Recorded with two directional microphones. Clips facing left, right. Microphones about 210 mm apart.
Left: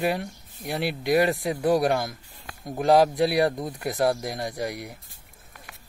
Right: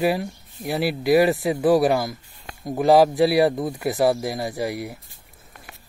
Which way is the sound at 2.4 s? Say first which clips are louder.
Right 6 dB; 25° right (ahead or behind).